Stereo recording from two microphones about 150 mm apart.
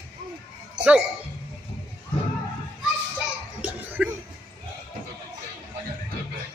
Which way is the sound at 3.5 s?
10° right (ahead or behind).